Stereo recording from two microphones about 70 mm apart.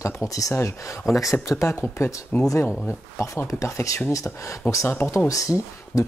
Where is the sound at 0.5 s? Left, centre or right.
Left.